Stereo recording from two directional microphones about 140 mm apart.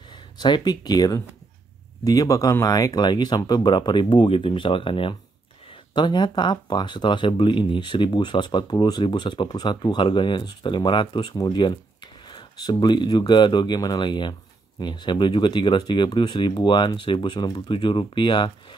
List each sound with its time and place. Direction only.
0.1 s speech: 30° left (ahead or behind)